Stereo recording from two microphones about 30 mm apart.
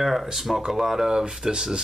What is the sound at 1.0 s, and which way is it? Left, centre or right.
Speech, right.